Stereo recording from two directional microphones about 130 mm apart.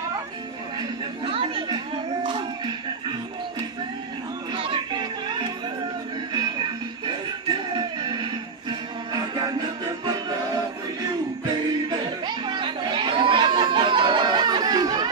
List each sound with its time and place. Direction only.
0.7 s chatter: 45° right (ahead or behind)
4.6 s music: 40° right (ahead or behind)
7.7 s music: 35° right (ahead or behind)
12.4 s chatter: 40° right (ahead or behind)